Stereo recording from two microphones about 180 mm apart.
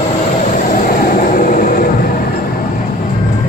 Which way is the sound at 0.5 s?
50° left (ahead or behind).